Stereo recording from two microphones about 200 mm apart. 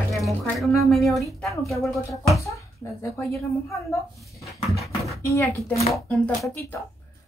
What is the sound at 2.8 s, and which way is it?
Speech, 15° left (ahead or behind).